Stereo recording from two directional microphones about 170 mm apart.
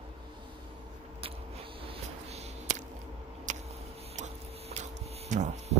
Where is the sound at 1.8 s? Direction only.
35° right (ahead or behind).